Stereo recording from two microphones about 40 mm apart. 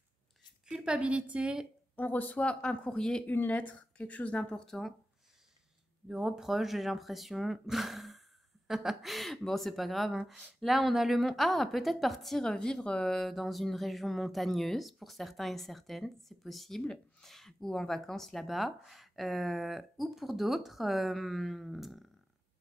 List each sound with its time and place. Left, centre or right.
0.8 s a woman's voice: right
2.0 s speech: left
2.6 s speech: left
3.3 s speech: left
4.6 s speech: centre
6.0 s speech: centre
13.3 s speech: centre